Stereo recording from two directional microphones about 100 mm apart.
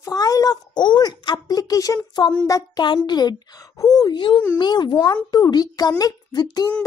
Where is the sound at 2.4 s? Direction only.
35° left (ahead or behind).